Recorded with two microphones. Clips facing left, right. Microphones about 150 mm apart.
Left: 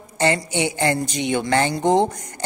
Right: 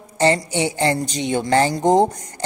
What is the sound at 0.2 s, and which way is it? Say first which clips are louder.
Speech: right 2 dB; 35° right (ahead or behind).